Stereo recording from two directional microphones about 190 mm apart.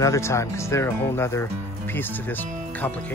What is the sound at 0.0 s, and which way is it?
Speech, 15° left (ahead or behind).